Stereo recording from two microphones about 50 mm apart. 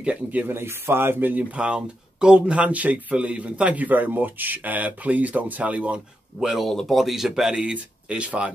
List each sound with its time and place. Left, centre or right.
0.0 s speech: right
0.5 s speech: right
1.5 s speech: centre
6.4 s speech: centre
6.7 s speech: centre
7.0 s speech: centre
7.5 s speech: centre